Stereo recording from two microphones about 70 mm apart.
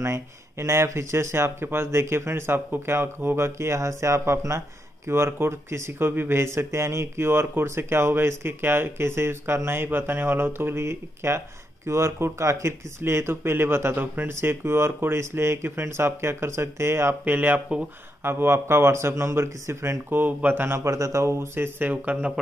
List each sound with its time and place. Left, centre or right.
0.0 s speech: right
17.2 s speech: right